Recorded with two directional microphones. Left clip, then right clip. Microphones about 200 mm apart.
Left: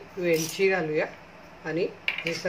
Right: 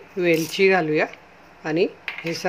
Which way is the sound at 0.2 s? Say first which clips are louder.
Right 6 dB; 45° right (ahead or behind).